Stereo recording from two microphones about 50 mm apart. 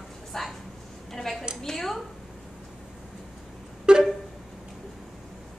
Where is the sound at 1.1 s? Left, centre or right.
Centre.